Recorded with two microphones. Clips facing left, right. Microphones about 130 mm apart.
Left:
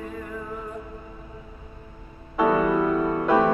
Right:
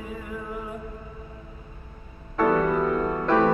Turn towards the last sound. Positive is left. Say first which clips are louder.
# left 1 dB
turn(degrees=10)  # may be behind; listen again after turning